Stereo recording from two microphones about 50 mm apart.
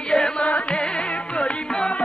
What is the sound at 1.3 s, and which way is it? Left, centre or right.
Music, centre.